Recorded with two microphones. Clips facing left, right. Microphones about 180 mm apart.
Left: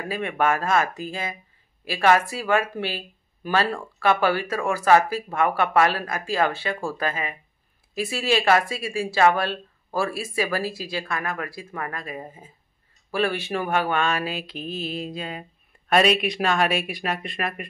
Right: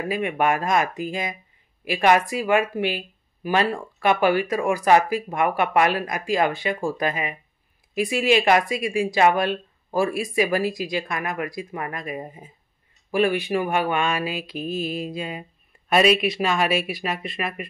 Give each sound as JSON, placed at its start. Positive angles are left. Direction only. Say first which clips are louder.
{"t": 0.1, "sound": "speech", "louder": "even", "side_deg": -15}